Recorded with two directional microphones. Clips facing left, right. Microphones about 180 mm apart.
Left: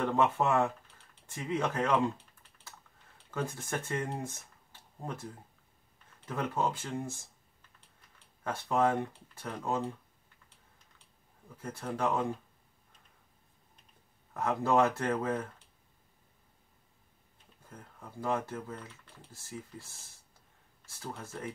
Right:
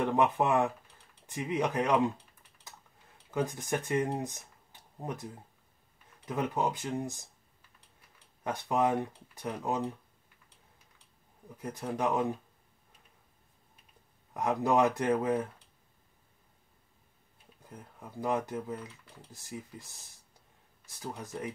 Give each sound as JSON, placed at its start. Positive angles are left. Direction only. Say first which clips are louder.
{"t": 0.0, "sound": "speech", "louder": "right 1 dB", "side_deg": -15}
{"t": 3.3, "sound": "speech", "louder": "right 4 dB", "side_deg": -15}
{"t": 8.5, "sound": "speech", "louder": "even", "side_deg": -15}
{"t": 11.4, "sound": "speech", "louder": "right 2 dB", "side_deg": -15}
{"t": 14.3, "sound": "speech", "louder": "right 1 dB", "side_deg": -15}
{"t": 17.6, "sound": "speech", "louder": "right 2 dB", "side_deg": -15}